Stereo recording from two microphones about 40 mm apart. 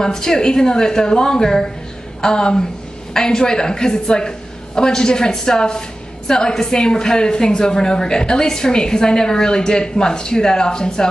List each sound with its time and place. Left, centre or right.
0.0 s a woman's voice: centre